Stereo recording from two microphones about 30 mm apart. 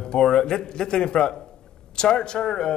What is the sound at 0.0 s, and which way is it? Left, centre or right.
Speech, left.